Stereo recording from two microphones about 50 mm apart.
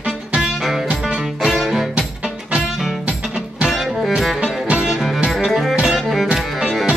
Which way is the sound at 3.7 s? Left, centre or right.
Centre.